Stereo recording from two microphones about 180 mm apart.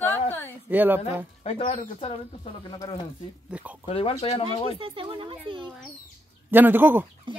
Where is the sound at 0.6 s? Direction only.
10° right (ahead or behind).